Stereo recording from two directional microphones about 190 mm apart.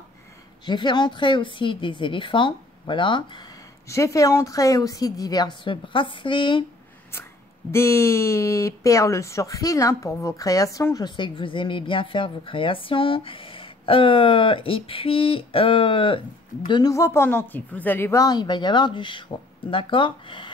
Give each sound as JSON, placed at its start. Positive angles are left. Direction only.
{"t": 0.7, "sound": "speech", "side_deg": 25}
{"t": 7.7, "sound": "speech", "side_deg": 15}